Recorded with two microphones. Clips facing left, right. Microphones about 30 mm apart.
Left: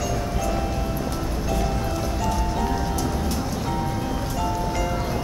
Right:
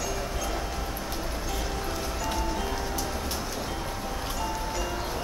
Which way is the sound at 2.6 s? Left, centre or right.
Centre.